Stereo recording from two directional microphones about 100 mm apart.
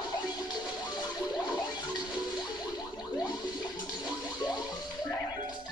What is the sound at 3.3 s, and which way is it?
Toilet flush, 45° left (ahead or behind).